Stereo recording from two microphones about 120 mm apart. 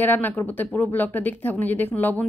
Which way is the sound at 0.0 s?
15° left (ahead or behind).